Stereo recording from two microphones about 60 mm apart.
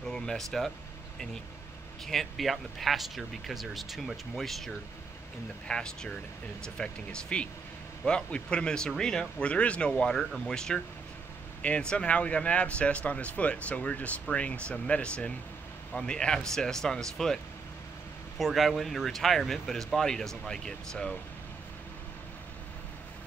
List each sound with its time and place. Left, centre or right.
0.0 s speech: centre
2.0 s speech: centre
9.5 s speech: left
18.4 s speech: centre